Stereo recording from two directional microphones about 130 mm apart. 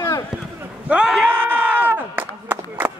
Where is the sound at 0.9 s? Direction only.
5° right (ahead or behind).